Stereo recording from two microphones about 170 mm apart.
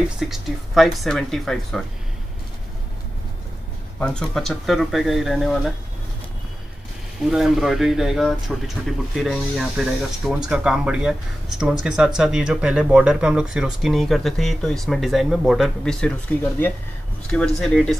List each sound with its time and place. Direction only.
0.2 s speech: centre (ahead or behind)
4.0 s speech: 5° left (ahead or behind)
7.2 s speech: centre (ahead or behind)